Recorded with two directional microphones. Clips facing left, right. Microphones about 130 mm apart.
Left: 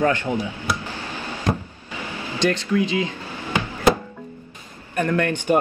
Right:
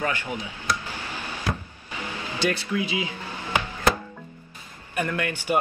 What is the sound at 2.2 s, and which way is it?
Speech, 10° right (ahead or behind).